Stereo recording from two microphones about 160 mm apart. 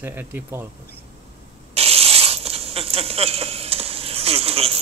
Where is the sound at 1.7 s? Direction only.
40° right (ahead or behind).